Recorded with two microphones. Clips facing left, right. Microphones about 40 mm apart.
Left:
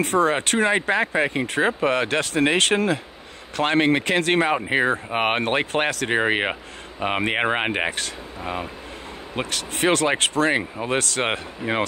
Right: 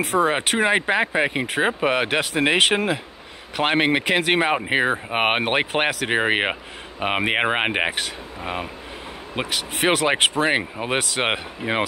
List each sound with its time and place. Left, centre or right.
0.2 s speech: centre
4.6 s speech: right